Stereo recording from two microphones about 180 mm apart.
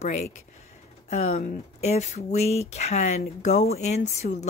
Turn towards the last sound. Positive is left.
turn(degrees=40)  # may be behind; listen again after turning